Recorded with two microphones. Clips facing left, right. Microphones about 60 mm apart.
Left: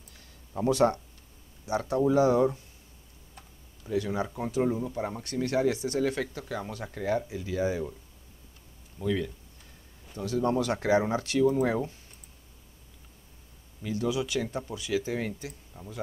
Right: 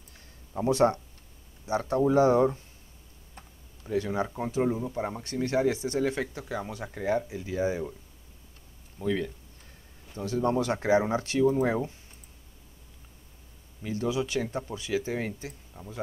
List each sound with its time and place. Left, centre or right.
0.7 s speech: right
3.4 s tick-tock: right
3.9 s speech: right
9.0 s speech: right
13.8 s speech: right